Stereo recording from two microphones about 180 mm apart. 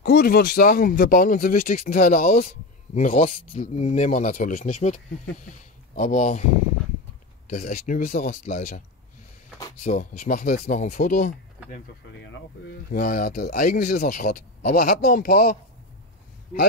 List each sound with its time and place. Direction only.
0.0 s speech: 55° left (ahead or behind)
7.4 s speech: 50° left (ahead or behind)
9.8 s speech: 45° left (ahead or behind)
12.9 s speech: 50° left (ahead or behind)